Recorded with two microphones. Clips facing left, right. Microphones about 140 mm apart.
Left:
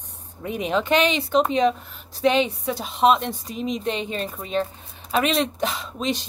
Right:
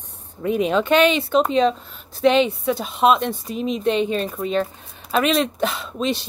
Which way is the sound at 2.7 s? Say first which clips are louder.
Even; 50° right (ahead or behind).